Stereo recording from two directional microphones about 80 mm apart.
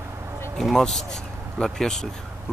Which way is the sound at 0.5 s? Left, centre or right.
Centre.